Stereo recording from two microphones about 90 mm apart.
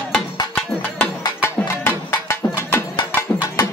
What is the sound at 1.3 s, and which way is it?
Music, 25° left (ahead or behind).